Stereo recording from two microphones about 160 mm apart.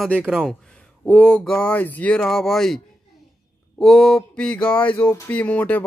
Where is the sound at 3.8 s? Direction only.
5° left (ahead or behind).